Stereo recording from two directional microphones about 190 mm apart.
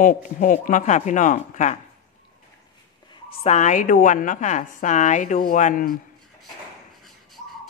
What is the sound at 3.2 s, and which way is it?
A woman's voice, 35° left (ahead or behind).